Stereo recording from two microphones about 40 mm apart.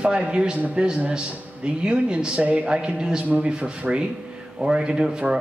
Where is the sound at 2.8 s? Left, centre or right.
Right.